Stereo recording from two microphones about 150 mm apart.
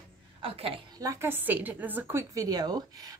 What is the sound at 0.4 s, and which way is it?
Speech, 40° right (ahead or behind).